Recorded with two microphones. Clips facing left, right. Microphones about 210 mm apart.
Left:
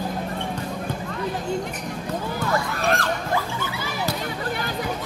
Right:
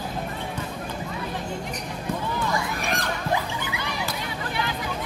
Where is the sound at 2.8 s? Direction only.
15° right (ahead or behind).